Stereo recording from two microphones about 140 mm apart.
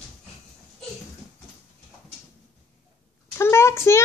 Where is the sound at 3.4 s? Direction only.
20° left (ahead or behind).